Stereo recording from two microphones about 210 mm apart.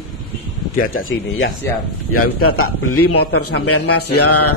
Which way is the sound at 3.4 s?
50° left (ahead or behind).